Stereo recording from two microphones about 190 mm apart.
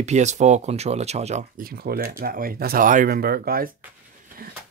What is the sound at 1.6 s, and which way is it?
Speech, 50° right (ahead or behind).